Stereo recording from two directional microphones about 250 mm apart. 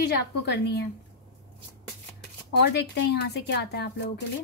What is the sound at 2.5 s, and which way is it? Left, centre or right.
Speech, left.